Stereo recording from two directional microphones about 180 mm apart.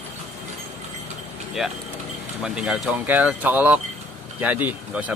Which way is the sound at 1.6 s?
Centre (ahead or behind).